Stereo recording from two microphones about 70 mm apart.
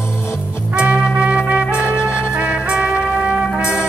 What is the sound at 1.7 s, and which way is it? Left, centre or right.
Music, left.